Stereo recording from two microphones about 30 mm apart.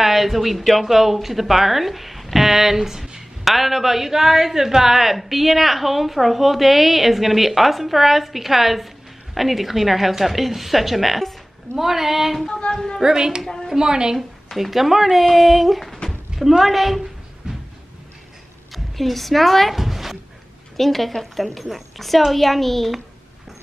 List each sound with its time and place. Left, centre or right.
0.0 s a woman's voice: centre
12.7 s speech: centre
13.0 s speech: right
14.6 s a woman's voice: centre
17.4 s a sound: right
18.7 s a woman's voice: centre
19.7 s a sound: centre
20.7 s a woman's voice: centre